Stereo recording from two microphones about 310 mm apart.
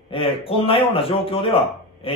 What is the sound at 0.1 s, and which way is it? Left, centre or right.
A man's voice, centre.